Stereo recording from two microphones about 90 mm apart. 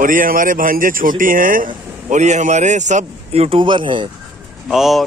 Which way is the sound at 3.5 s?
65° right (ahead or behind).